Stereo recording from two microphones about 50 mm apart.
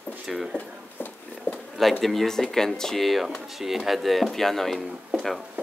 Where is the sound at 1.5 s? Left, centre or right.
Left.